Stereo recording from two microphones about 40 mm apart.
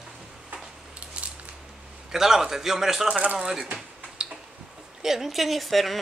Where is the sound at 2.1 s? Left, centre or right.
Centre.